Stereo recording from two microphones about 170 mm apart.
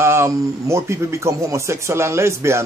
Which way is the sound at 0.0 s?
15° right (ahead or behind).